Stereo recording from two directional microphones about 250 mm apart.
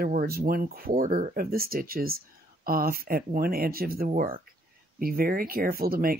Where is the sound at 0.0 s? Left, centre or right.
Right.